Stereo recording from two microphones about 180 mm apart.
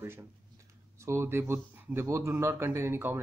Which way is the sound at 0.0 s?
15° right (ahead or behind).